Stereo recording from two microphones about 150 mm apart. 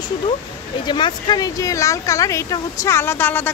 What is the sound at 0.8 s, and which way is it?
Speech, 30° left (ahead or behind).